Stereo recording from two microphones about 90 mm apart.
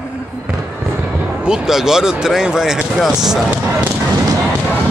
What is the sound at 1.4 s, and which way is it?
Speech, 5° right (ahead or behind).